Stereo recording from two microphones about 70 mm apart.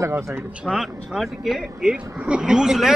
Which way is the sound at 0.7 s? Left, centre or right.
Centre.